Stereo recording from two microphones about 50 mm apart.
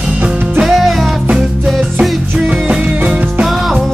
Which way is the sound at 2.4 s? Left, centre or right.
Right.